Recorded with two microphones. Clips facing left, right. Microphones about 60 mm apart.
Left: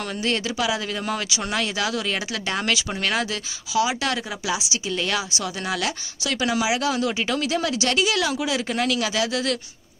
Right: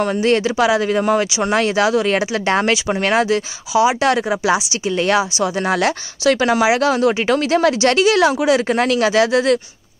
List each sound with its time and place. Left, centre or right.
0.0 s speech: right
2.0 s a woman's voice: right